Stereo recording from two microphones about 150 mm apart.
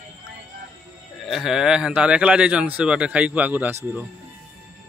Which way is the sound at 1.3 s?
5° right (ahead or behind).